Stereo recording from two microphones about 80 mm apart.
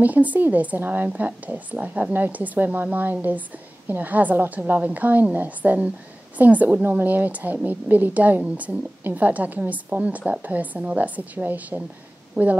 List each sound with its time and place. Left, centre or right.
0.0 s a woman's voice: centre